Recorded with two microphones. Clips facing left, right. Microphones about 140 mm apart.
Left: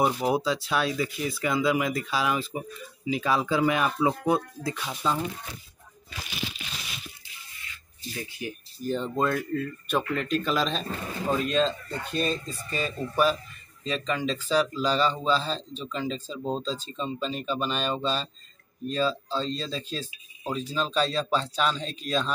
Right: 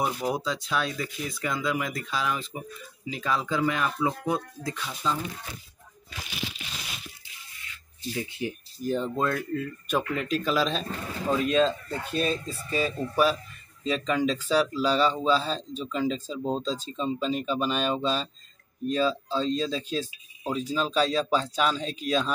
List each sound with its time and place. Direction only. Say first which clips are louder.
0.0 s speech: left 4 dB; 5° left (ahead or behind)
8.2 s speech: right 3 dB; 25° right (ahead or behind)
8.8 s speech: even; 5° right (ahead or behind)